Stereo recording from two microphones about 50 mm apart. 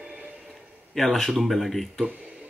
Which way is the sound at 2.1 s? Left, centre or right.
Right.